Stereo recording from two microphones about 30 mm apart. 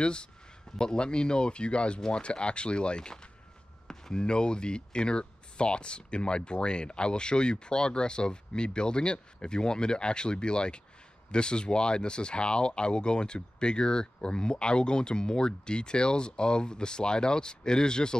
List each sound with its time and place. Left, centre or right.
0.0 s speech: left
3.8 s chop: centre
4.2 s speech: left